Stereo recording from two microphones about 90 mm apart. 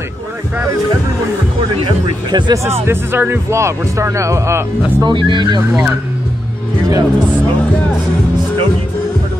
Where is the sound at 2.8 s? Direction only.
25° right (ahead or behind).